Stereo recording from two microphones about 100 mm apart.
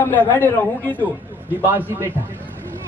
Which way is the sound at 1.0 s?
20° right (ahead or behind).